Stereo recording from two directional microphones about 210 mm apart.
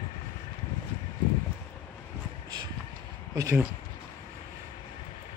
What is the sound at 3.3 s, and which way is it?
Speech, 15° right (ahead or behind).